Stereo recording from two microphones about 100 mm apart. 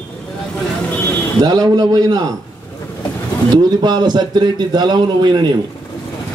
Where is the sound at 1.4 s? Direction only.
40° right (ahead or behind).